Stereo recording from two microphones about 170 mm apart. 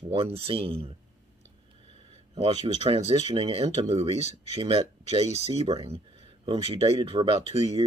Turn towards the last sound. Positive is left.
turn(degrees=-35)  # may be behind; listen again after turning